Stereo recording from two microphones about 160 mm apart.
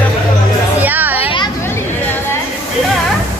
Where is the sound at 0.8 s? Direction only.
10° right (ahead or behind).